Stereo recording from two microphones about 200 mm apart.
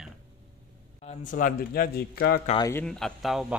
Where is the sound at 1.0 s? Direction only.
35° left (ahead or behind).